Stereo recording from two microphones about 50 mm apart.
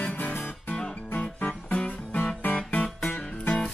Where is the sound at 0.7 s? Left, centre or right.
Centre.